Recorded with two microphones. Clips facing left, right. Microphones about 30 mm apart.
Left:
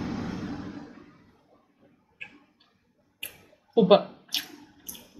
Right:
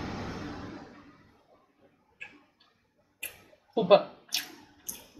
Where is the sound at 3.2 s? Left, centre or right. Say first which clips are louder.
Right 1 dB; centre.